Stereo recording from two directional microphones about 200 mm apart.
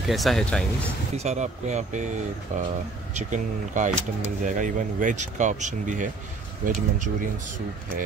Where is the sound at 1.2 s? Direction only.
35° right (ahead or behind).